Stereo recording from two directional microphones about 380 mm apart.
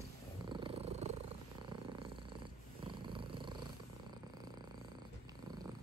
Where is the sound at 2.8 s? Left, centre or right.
Centre.